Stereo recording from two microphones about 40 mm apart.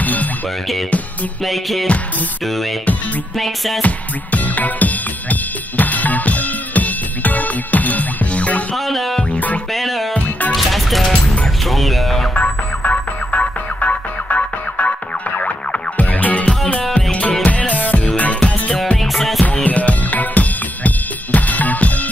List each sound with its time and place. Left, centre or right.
0.0 s music: left
1.4 s music: centre
3.8 s music: left
8.7 s music: centre
9.3 s music: left
9.7 s music: centre
10.1 s music: left
10.5 s music: centre
12.4 s music: left
18.9 s music: centre
19.4 s music: left